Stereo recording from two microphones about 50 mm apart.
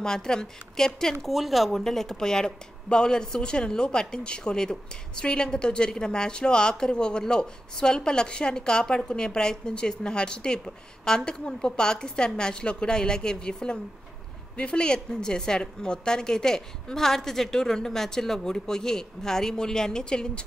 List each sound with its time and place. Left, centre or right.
0.0 s speech: centre
1.2 s speech: centre